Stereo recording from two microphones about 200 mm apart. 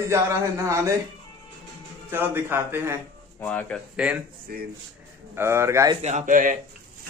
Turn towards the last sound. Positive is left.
turn(degrees=-40)  # may be behind; listen again after turning